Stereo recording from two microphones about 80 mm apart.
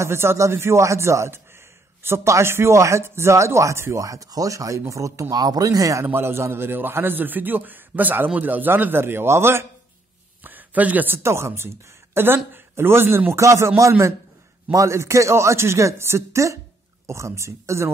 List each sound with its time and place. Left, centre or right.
0.0 s speech: right
4.0 s speech: right
6.0 s a man's voice: right
10.4 s a sound: right
11.2 s speech: right